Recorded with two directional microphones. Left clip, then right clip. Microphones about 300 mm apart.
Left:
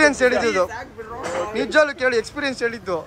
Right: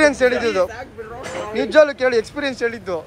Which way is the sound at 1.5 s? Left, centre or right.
Centre.